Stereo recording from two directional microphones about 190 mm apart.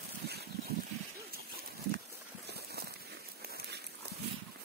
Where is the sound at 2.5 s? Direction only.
55° right (ahead or behind).